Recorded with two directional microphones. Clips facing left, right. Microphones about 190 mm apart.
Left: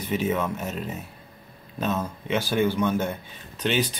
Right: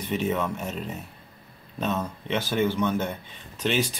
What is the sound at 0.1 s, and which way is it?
Speech, centre (ahead or behind).